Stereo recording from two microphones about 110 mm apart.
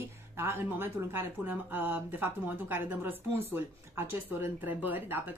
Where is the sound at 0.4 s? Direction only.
20° right (ahead or behind).